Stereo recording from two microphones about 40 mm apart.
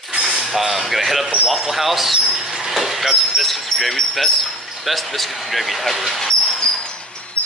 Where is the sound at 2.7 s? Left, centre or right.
Centre.